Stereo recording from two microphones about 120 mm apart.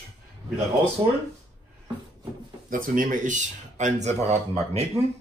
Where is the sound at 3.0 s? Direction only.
90° right; by 4.8 s 65° right (ahead or behind).